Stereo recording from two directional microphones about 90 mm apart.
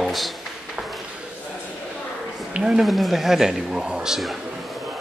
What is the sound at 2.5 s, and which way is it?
A man's voice, 10° right (ahead or behind).